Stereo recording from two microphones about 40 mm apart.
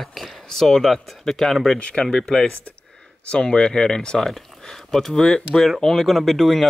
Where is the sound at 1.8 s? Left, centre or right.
Left.